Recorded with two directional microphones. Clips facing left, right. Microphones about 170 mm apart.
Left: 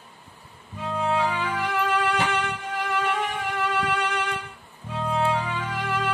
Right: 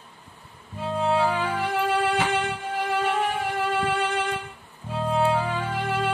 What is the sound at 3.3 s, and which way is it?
Music, 50° right (ahead or behind).